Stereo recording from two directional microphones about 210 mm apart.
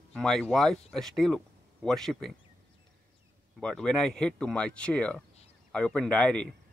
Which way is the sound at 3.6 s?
5° left (ahead or behind).